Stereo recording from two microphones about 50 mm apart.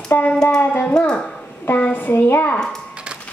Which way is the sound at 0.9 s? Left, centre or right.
Centre.